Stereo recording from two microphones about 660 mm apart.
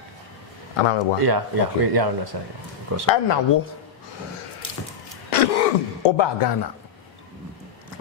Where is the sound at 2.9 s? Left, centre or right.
Right.